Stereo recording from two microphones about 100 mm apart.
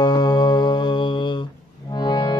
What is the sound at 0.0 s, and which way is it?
Mantra, 45° left (ahead or behind).